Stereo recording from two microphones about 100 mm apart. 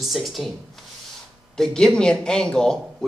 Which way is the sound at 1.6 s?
5° left (ahead or behind).